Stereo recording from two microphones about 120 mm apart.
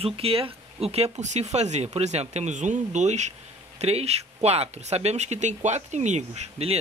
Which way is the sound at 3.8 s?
60° right (ahead or behind).